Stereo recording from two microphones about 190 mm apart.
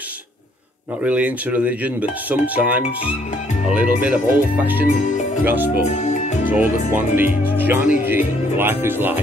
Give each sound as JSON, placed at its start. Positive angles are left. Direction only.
{"t": 1.0, "sound": "speech", "side_deg": -5}
{"t": 5.0, "sound": "speech", "side_deg": 40}
{"t": 5.4, "sound": "speech", "side_deg": -10}
{"t": 5.9, "sound": "speech", "side_deg": 40}
{"t": 6.4, "sound": "speech", "side_deg": -10}